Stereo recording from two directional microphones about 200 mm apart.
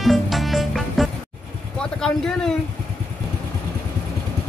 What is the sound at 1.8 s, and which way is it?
Vehicle, 5° left (ahead or behind).